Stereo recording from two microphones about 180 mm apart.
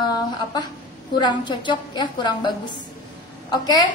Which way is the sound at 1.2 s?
25° left (ahead or behind).